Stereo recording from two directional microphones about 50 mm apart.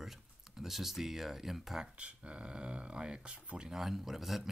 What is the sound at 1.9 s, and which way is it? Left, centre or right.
Speech, right.